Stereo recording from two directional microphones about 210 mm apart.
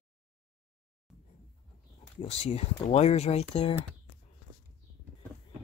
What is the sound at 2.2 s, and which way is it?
Speech, 30° left (ahead or behind).